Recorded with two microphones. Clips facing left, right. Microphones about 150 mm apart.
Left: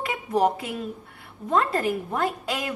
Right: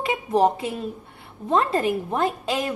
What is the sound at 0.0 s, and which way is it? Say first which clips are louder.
A woman's voice: right 3 dB; 25° right (ahead or behind).